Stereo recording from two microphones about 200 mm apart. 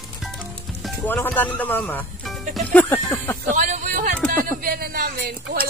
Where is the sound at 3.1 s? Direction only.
10° left (ahead or behind).